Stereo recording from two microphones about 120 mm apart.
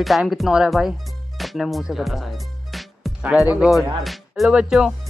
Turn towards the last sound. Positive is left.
turn(degrees=-5)  # may be behind; listen again after turning